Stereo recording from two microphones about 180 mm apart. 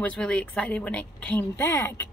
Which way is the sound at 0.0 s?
5° left (ahead or behind).